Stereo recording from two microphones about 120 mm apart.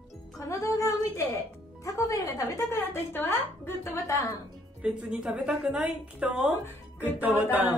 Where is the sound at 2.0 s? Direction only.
30° left (ahead or behind).